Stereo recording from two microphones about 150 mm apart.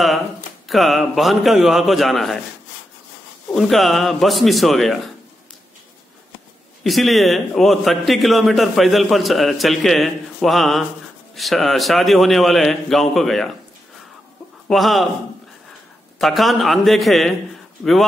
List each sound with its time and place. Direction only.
0.7 s a man's voice: centre (ahead or behind)
3.5 s a man's voice: centre (ahead or behind)
6.8 s a man's voice: centre (ahead or behind)
14.7 s a man's voice: centre (ahead or behind)
16.2 s a man's voice: centre (ahead or behind)